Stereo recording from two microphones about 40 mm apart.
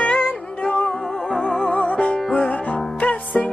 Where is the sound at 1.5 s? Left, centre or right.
Left.